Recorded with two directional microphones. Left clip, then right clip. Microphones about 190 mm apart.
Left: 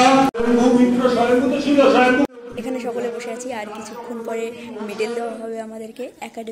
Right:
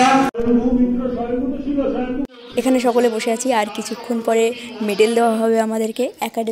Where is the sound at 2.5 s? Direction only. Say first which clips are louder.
Right 9 dB; 45° right (ahead or behind).